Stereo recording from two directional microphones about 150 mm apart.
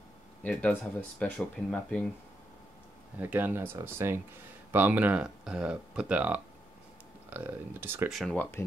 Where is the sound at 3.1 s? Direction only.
10° right (ahead or behind).